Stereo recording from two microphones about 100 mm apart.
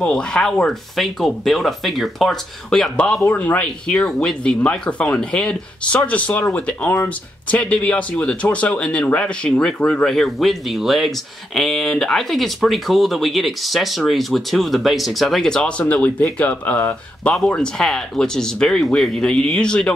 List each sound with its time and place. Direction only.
0.0 s speech: 10° left (ahead or behind)
3.3 s speech: 15° left (ahead or behind)
4.0 s speech: 5° left (ahead or behind)